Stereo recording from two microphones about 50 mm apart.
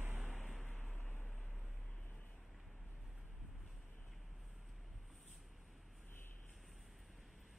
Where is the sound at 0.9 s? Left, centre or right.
Left.